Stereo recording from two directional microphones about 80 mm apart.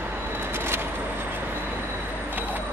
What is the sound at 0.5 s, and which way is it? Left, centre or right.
Vehicle, right.